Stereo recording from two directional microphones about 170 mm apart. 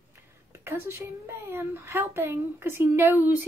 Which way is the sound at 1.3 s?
15° right (ahead or behind).